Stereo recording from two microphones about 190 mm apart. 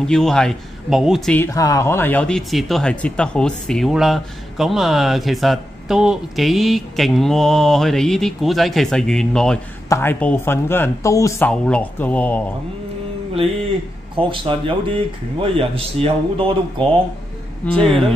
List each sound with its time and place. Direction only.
0.0 s speech: 5° left (ahead or behind)
14.1 s speech: 25° right (ahead or behind)
17.7 s speech: centre (ahead or behind)